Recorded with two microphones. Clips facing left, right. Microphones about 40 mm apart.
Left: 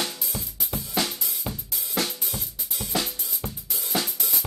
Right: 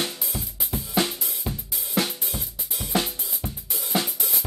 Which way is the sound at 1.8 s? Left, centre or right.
Right.